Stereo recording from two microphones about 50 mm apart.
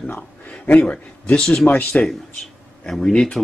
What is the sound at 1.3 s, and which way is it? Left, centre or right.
A man's voice, centre.